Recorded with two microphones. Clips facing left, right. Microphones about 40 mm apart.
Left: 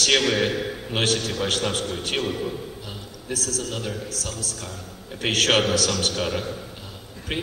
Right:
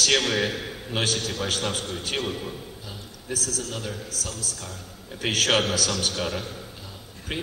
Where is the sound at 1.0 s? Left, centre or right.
Left.